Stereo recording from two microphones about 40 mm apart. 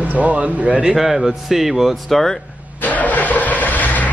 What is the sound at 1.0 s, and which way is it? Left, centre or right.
Speech, centre.